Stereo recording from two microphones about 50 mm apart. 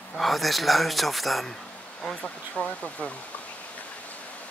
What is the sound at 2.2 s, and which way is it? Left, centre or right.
Speech, left.